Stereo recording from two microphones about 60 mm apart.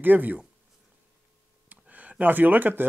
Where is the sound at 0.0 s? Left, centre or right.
Right.